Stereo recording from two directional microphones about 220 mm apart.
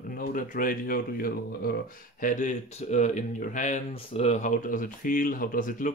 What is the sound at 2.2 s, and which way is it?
Speech, 35° left (ahead or behind).